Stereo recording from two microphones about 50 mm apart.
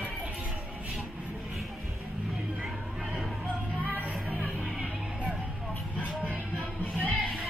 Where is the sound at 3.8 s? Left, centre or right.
Right.